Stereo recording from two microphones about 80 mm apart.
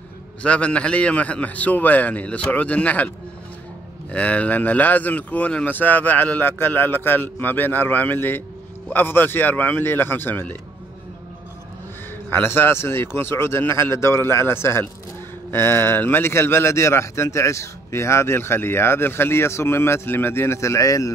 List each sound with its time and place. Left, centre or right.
0.4 s a man's voice: centre
4.1 s speech: centre
12.3 s speech: left